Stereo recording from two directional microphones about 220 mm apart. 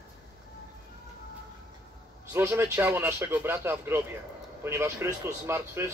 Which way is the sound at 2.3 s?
10° right (ahead or behind).